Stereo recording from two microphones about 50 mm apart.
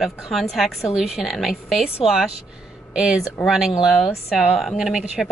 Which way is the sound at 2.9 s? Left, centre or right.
Centre.